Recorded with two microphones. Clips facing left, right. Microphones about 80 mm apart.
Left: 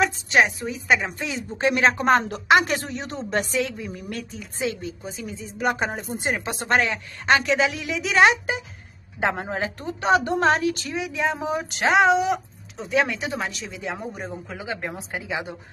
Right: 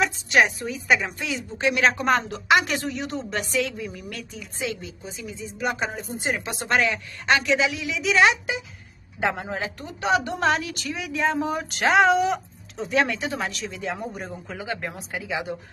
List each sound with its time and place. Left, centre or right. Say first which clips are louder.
0.7 s a woman's voice: even; left
11.1 s speech: right 2 dB; centre
15.0 s speech: even; left